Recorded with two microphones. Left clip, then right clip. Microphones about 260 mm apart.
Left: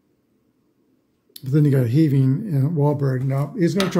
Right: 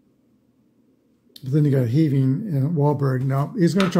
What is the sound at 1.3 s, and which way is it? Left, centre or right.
Speech, centre.